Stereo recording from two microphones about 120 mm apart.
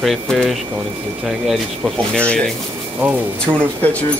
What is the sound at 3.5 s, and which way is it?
Speech, 30° right (ahead or behind).